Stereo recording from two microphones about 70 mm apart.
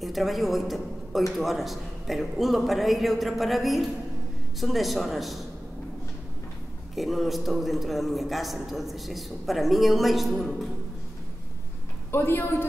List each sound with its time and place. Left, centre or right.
0.0 s a woman's voice: centre
7.0 s a man's voice: centre
12.1 s a woman's voice: left